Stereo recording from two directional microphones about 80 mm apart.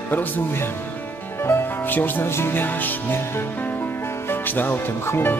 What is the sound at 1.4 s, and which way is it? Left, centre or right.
Music, left.